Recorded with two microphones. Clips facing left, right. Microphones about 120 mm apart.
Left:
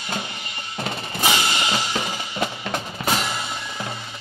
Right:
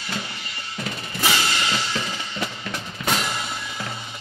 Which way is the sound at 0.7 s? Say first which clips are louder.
Left 3 dB; 30° left (ahead or behind).